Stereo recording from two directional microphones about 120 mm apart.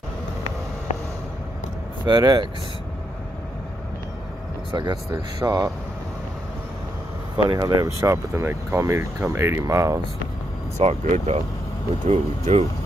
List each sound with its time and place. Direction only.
2.0 s speech: 35° right (ahead or behind)
4.6 s speech: 40° right (ahead or behind)
7.4 s speech: 30° right (ahead or behind)
10.8 s speech: 75° right (ahead or behind)